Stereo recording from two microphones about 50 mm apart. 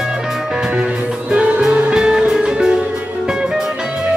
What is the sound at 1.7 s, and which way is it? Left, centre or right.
Music, centre.